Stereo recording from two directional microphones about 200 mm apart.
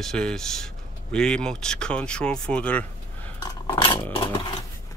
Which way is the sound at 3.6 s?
25° left (ahead or behind).